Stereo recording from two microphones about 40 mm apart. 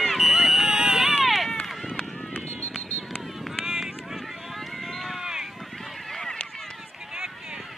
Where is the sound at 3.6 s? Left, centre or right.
Centre.